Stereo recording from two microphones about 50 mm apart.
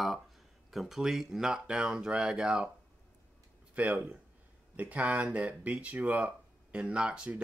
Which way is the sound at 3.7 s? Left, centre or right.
Right.